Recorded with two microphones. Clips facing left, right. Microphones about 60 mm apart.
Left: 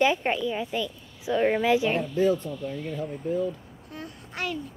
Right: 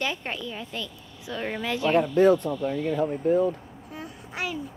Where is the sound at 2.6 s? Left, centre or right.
Right.